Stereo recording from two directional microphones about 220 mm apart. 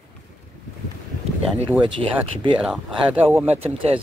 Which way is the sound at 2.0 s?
25° right (ahead or behind).